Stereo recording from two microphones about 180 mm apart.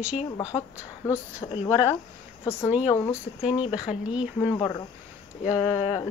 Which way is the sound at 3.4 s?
5° right (ahead or behind).